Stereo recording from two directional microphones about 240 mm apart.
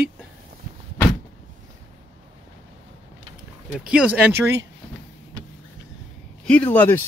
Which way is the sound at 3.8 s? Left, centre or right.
Centre.